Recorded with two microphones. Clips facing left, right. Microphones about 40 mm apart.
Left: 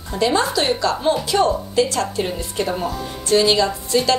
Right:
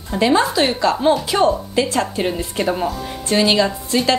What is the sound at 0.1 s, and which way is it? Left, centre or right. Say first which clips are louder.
A woman's voice: right 3 dB; centre.